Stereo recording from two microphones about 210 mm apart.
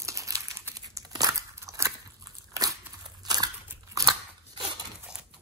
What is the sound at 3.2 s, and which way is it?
Scissors, 20° right (ahead or behind).